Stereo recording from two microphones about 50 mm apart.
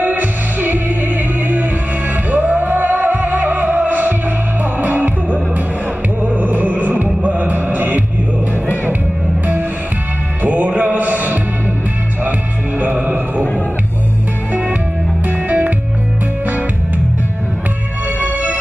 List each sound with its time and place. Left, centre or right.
0.0 s music: right
7.2 s mantra: right
10.4 s music: right
14.5 s music: right
18.3 s music: right